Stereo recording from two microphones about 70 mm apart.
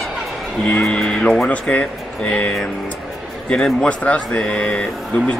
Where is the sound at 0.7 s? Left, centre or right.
Centre.